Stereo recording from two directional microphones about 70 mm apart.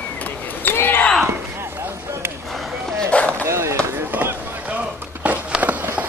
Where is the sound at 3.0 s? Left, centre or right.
Centre.